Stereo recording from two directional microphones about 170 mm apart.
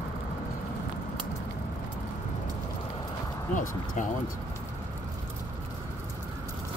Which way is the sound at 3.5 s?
50° left (ahead or behind).